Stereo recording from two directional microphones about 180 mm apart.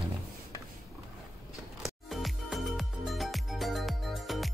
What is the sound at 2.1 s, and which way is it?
Music, centre (ahead or behind).